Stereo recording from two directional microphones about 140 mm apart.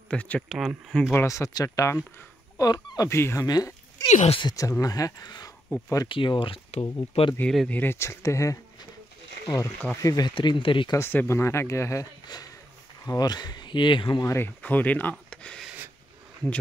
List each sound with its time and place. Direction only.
0.1 s speech: 10° left (ahead or behind)
0.5 s speech: centre (ahead or behind)
1.1 s speech: 20° left (ahead or behind)
4.1 s speech: 55° left (ahead or behind)
4.4 s speech: 25° left (ahead or behind)
6.0 s speech: 35° left (ahead or behind)
7.3 s speech: 5° left (ahead or behind)
10.0 s speech: 30° left (ahead or behind)
11.0 s speech: 15° left (ahead or behind); by 14.2 s 35° left (ahead or behind)
14.2 s speech: 15° left (ahead or behind)